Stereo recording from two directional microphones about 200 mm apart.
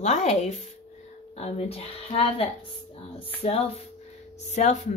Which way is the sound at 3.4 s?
30° left (ahead or behind).